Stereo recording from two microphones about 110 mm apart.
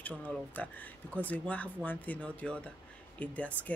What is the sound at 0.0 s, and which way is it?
Speech, 15° left (ahead or behind).